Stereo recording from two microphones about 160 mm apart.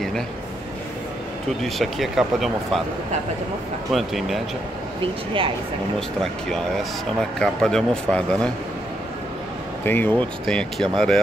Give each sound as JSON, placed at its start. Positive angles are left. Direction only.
{"t": 1.6, "sound": "speech", "side_deg": 0}
{"t": 3.9, "sound": "speech", "side_deg": 0}
{"t": 5.0, "sound": "speech", "side_deg": -35}
{"t": 6.5, "sound": "speech", "side_deg": 0}
{"t": 9.8, "sound": "speech", "side_deg": 10}